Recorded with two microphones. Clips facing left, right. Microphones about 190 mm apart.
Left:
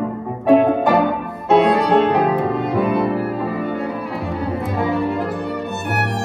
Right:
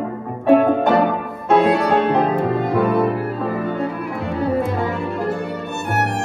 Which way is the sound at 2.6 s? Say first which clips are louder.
Right 1 dB; 15° left (ahead or behind).